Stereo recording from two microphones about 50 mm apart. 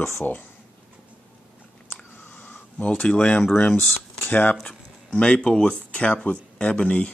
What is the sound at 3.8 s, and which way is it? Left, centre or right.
Speech, left.